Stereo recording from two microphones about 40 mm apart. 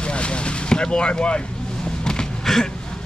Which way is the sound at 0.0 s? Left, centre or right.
Left.